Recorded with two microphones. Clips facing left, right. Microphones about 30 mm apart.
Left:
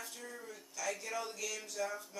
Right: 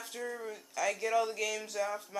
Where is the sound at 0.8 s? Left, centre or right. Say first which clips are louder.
Right 7 dB; right.